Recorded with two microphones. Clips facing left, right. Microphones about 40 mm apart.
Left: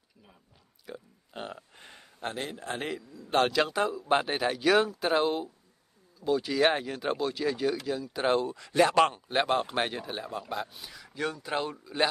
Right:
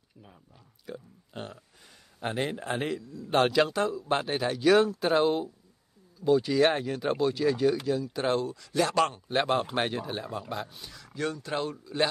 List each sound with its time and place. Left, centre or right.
0.8 s a sound: centre
2.4 s speech: right
2.7 s speech: centre
3.7 s speech: centre
8.2 s speech: centre
8.5 s speech: left
9.0 s speech: centre